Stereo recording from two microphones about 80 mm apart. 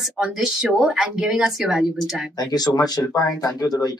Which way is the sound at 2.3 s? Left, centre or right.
Left.